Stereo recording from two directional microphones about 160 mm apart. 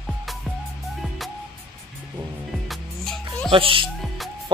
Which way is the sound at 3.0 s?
5° left (ahead or behind).